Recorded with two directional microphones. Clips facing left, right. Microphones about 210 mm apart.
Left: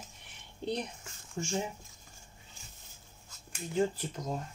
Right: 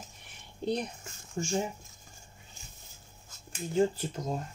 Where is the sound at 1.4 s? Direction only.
40° right (ahead or behind).